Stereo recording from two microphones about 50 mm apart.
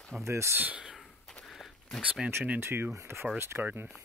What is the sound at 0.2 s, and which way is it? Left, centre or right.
Speech, right.